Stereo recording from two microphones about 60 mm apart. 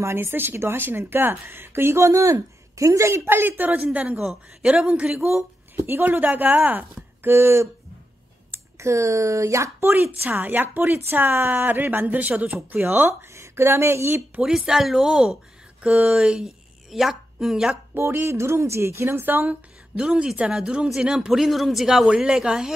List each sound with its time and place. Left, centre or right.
0.0 s speech: right
3.3 s speech: right
4.2 s speech: centre
4.6 s speech: centre
5.9 s speech: right
10.0 s speech: right
13.3 s speech: right
14.7 s speech: centre
17.9 s speech: right
20.0 s speech: centre